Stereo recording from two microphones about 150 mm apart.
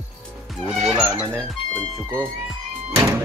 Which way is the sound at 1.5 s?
5° left (ahead or behind).